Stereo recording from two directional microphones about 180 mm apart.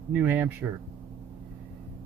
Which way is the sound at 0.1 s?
10° right (ahead or behind).